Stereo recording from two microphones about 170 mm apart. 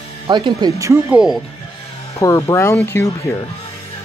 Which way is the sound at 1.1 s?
5° right (ahead or behind).